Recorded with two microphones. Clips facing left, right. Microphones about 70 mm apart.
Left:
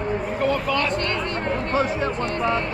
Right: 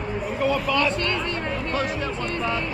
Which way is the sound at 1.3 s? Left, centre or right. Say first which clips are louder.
Left 3 dB; left.